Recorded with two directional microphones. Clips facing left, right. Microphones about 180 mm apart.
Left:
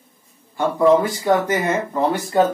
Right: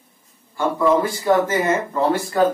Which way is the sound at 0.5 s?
20° left (ahead or behind).